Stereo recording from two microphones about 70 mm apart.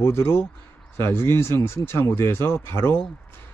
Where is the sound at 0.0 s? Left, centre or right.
Left.